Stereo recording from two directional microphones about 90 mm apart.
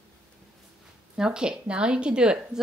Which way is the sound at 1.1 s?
10° right (ahead or behind).